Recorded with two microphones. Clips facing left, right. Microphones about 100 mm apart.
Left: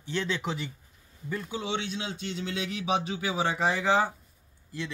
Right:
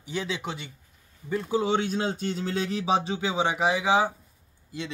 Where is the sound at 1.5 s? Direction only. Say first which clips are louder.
Right 9 dB; 40° right (ahead or behind).